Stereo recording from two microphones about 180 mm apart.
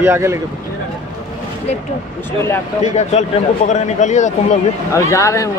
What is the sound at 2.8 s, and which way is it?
A man's voice, 40° left (ahead or behind).